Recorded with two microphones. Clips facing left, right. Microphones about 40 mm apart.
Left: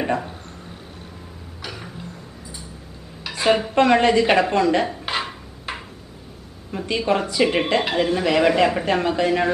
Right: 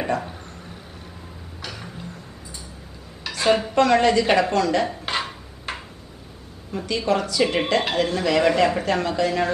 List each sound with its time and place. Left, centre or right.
1.6 s a sound: centre
3.3 s dishes: centre
3.7 s a woman's voice: left
4.8 s dishes: centre
6.9 s speech: left